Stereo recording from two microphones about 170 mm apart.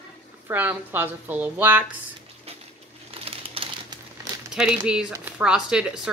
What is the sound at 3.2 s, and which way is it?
Crumpling, 35° right (ahead or behind).